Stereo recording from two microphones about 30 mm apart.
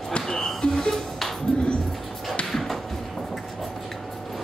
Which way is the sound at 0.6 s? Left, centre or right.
Left.